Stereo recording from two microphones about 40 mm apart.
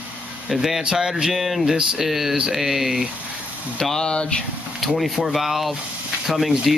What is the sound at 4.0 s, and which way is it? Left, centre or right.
Speech, left.